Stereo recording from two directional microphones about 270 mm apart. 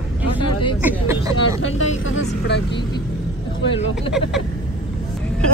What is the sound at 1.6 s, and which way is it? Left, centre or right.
Speech, left.